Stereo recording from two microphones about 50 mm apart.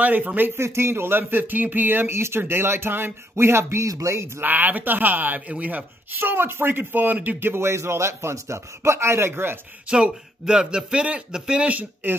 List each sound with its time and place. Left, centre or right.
0.0 s speech: right
0.6 s speech: right
2.1 s speech: right
4.4 s speech: right
7.3 s speech: right
9.8 s speech: centre